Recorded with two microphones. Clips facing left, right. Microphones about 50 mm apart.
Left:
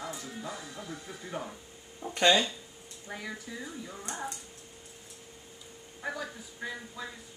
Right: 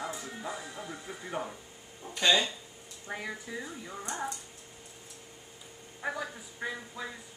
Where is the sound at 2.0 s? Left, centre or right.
Centre.